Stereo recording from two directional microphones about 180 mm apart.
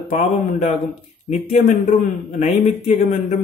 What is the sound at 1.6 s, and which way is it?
A man's voice, 40° left (ahead or behind).